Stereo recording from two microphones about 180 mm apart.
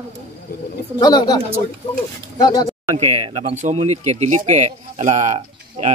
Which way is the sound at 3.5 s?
40° right (ahead or behind).